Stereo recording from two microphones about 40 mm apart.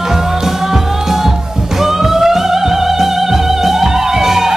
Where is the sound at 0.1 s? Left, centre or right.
Centre.